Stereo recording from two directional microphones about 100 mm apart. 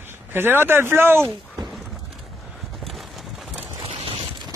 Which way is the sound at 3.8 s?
70° right (ahead or behind).